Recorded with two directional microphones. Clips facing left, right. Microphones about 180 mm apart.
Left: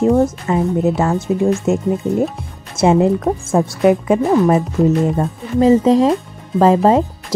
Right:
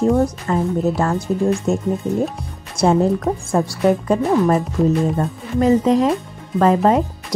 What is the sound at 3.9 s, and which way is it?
Speech, 15° left (ahead or behind).